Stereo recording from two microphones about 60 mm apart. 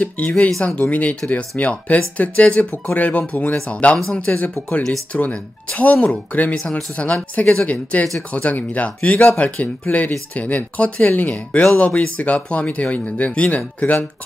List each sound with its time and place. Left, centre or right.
0.0 s speech: left
0.5 s speech: centre
0.7 s speech: left